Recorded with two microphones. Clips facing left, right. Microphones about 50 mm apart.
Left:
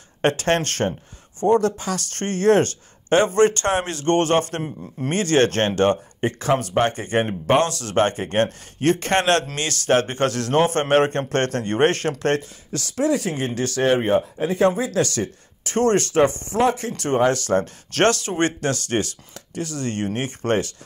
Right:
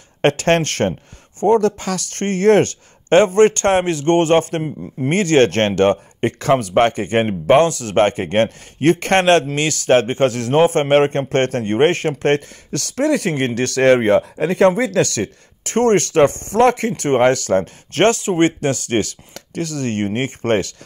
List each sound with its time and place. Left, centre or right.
0.2 s speech: right
12.4 s speech: right
19.3 s speech: right